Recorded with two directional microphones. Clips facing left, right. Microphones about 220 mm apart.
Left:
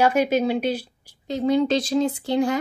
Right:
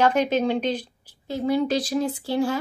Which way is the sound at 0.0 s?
10° left (ahead or behind).